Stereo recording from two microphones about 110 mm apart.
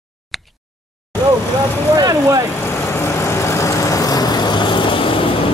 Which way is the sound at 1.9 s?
35° right (ahead or behind).